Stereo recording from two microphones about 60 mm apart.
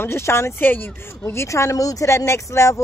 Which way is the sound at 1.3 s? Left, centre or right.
Left.